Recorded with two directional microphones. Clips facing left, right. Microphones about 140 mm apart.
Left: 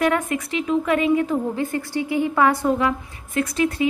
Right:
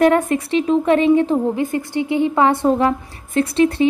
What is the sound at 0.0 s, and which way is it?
A woman's voice, 30° right (ahead or behind).